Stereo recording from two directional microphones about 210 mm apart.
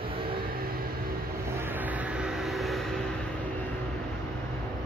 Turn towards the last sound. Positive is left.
turn(degrees=0)  # may be behind; listen again after turning